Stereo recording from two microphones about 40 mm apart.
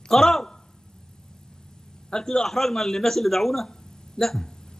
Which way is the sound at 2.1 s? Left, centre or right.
Centre.